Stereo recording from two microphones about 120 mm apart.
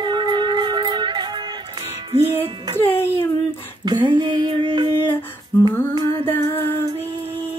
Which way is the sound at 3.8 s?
40° right (ahead or behind).